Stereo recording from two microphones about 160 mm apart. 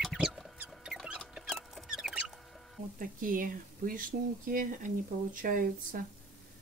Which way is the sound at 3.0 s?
60° right (ahead or behind).